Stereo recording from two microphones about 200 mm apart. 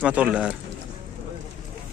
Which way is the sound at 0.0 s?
5° right (ahead or behind).